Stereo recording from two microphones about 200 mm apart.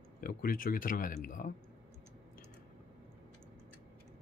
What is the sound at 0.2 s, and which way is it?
Speech, 45° left (ahead or behind).